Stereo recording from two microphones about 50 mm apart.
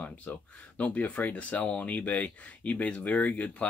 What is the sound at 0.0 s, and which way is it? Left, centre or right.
Speech, left.